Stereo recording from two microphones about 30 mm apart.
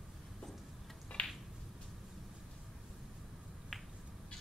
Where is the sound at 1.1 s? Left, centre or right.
Left.